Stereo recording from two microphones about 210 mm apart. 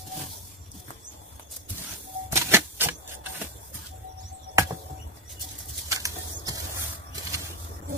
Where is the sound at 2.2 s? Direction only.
10° right (ahead or behind).